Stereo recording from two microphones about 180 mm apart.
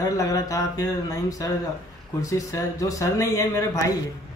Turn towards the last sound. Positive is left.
turn(degrees=20)  # may be behind; listen again after turning